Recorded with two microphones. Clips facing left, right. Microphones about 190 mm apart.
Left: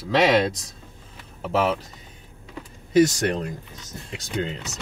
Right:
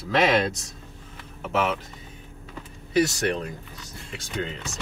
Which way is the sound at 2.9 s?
40° left (ahead or behind).